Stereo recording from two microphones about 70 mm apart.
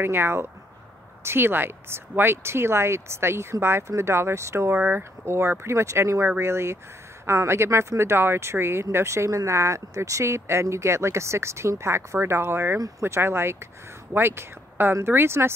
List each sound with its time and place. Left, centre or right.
0.0 s speech: right
4.7 s speech: right
5.2 s speech: right